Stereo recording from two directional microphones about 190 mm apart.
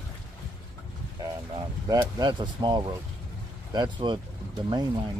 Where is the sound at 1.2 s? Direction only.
20° right (ahead or behind).